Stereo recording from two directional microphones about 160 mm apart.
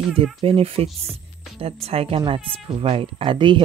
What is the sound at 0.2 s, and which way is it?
Speech, 35° right (ahead or behind).